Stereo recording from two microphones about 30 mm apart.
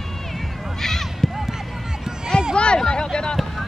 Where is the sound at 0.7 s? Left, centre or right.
Centre.